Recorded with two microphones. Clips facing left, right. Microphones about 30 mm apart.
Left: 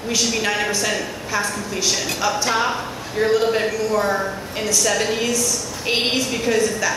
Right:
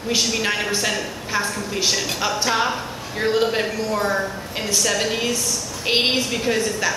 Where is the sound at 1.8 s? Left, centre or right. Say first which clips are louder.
Left 1 dB; right.